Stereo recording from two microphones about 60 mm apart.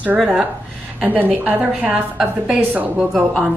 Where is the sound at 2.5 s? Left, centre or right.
Right.